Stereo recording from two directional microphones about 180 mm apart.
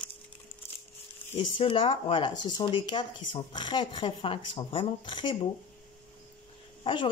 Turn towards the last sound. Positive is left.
turn(degrees=25)  # may be behind; listen again after turning